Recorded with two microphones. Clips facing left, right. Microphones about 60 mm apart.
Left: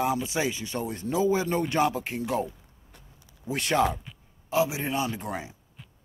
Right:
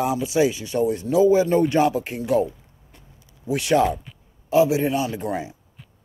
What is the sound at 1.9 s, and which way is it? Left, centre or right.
Speech, centre.